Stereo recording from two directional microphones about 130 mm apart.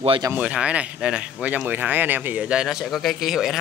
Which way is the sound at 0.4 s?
10° right (ahead or behind).